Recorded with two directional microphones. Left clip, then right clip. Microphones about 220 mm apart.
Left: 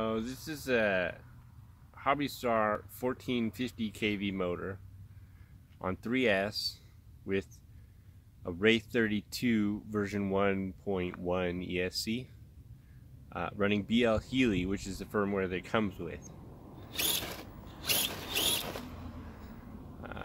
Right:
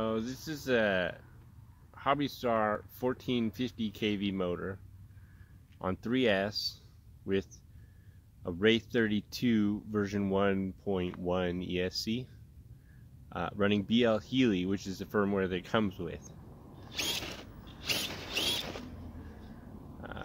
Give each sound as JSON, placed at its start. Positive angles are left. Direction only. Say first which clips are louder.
{"t": 0.0, "sound": "speech", "louder": "even", "side_deg": -15}
{"t": 5.8, "sound": "speech", "louder": "right 1 dB", "side_deg": -15}
{"t": 13.3, "sound": "speech", "louder": "right 1 dB", "side_deg": -15}
{"t": 16.9, "sound": "mechanisms", "louder": "left 1 dB", "side_deg": -10}
{"t": 17.8, "sound": "rodents", "louder": "left 1 dB", "side_deg": -10}